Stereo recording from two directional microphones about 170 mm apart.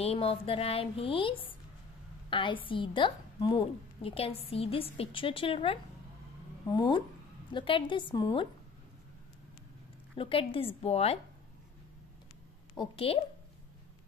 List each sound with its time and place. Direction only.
0.0 s a woman's voice: 35° left (ahead or behind)
10.1 s a woman's voice: 30° left (ahead or behind)
12.7 s a woman's voice: 30° left (ahead or behind)